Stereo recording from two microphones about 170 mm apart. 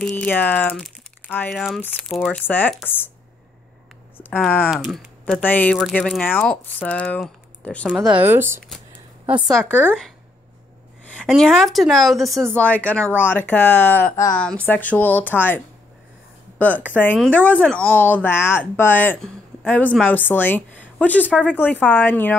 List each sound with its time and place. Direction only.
0.1 s speech: 10° left (ahead or behind)
1.5 s speech: centre (ahead or behind)
2.4 s speech: 10° left (ahead or behind)
4.2 s speech: 10° left (ahead or behind)
4.6 s speech: centre (ahead or behind)
9.5 s speech: 5° left (ahead or behind)
11.1 s speech: 5° left (ahead or behind); by 14.4 s 20° left (ahead or behind)
14.4 s a woman's voice: 10° left (ahead or behind)